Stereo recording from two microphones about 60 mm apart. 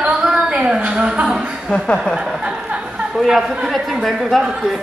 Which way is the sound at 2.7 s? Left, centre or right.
Centre.